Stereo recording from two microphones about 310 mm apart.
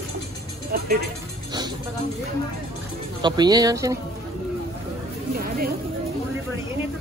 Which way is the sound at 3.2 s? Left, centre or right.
Centre.